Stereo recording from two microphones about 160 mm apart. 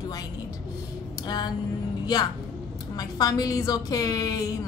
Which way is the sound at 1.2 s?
25° left (ahead or behind).